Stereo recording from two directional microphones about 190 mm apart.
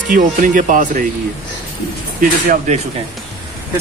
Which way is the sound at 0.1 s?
45° right (ahead or behind).